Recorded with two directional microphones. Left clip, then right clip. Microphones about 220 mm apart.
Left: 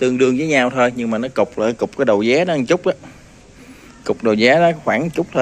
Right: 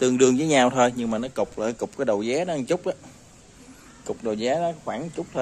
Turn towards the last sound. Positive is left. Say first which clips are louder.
# left 12 dB
turn(degrees=10)  # may be behind; listen again after turning